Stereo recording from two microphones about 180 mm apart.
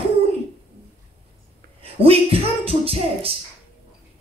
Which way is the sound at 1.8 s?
30° right (ahead or behind).